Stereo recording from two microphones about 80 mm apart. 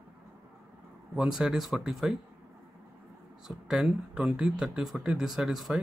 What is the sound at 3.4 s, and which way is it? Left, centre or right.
Speech, centre.